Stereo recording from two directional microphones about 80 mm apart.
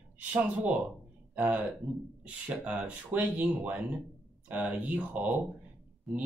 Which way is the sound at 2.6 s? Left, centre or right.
Centre.